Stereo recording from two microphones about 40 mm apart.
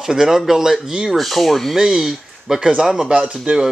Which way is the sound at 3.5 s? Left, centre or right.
Right.